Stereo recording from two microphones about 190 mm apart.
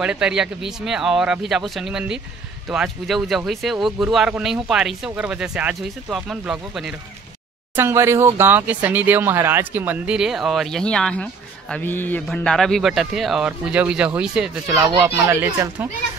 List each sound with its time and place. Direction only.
0.0 s speech: 5° right (ahead or behind)